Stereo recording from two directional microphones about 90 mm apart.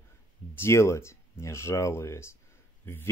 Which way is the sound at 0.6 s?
30° left (ahead or behind).